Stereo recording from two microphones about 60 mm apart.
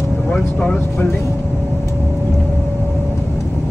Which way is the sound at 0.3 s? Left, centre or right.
Centre.